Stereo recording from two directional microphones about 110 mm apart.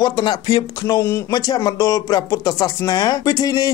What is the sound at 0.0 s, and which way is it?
Speech, 40° left (ahead or behind).